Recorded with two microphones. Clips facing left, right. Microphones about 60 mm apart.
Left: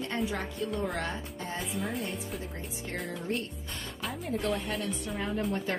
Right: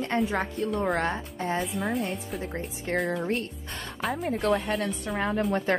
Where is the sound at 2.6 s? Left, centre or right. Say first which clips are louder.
Right 8 dB; right.